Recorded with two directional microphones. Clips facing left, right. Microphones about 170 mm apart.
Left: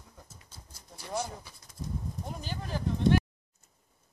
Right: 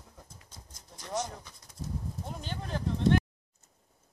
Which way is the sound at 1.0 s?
10° left (ahead or behind).